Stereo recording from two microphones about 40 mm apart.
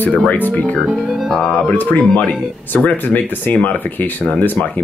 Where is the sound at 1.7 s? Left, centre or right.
Left.